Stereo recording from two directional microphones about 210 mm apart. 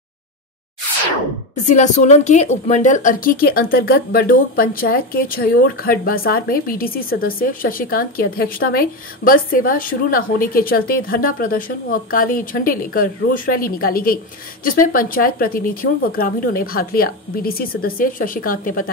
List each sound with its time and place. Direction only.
1.5 s a woman's voice: 35° left (ahead or behind)